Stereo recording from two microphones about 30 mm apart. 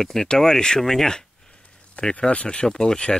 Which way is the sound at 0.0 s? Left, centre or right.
Centre.